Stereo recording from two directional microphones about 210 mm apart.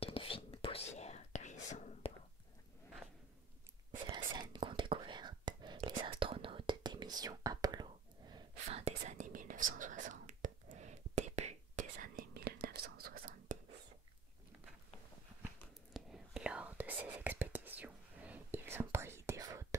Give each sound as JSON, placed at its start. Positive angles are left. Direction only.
{"t": 0.0, "sound": "whispering", "side_deg": 25}
{"t": 4.1, "sound": "whispering", "side_deg": -20}
{"t": 8.6, "sound": "whispering", "side_deg": -30}
{"t": 15.9, "sound": "whispering", "side_deg": -5}